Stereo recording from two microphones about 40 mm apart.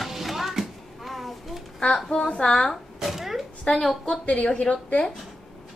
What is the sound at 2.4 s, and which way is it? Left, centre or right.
Speech, centre.